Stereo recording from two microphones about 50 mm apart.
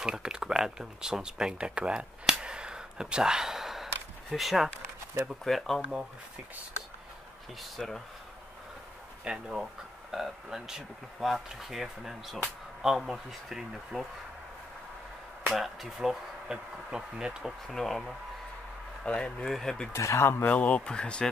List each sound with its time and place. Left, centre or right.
0.0 s speech: centre
2.4 s a sound: centre
5.4 s speech: centre
5.8 s speech: centre
7.7 s speech: centre
9.2 s speech: centre
15.5 s speech: centre
17.4 s speech: centre
19.0 s speech: left
19.4 s speech: centre
19.9 s speech: left
20.4 s speech: left